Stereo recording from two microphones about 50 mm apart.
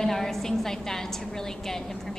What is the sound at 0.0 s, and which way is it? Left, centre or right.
A woman's voice, centre.